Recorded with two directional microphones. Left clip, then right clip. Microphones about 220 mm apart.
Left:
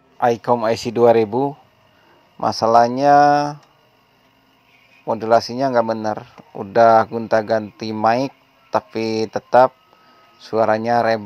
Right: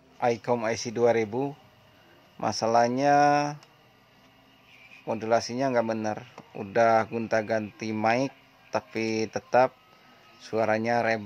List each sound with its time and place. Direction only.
0.2 s speech: 20° left (ahead or behind)
5.0 s speech: 15° left (ahead or behind)